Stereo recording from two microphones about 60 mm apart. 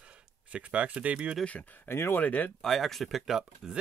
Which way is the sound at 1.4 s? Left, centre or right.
Left.